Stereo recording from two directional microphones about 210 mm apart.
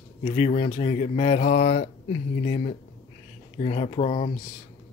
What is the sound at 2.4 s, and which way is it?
Speech, 30° left (ahead or behind).